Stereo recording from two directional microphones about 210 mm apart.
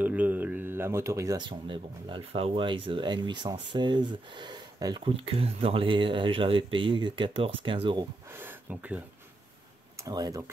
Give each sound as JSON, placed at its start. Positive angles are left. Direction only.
{"t": 0.0, "sound": "speech", "side_deg": -10}
{"t": 8.3, "sound": "speech", "side_deg": -10}
{"t": 10.0, "sound": "speech", "side_deg": -15}